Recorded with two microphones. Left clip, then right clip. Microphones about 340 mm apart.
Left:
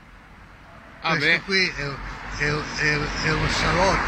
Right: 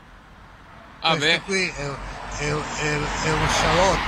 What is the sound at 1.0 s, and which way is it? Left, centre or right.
Speech, centre.